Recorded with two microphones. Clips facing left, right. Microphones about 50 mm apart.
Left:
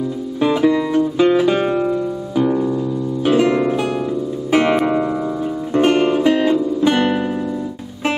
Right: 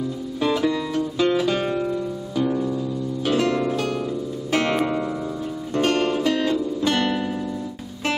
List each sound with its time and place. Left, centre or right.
0.4 s music: centre